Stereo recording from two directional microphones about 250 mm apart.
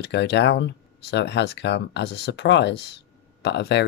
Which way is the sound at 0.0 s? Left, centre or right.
Left.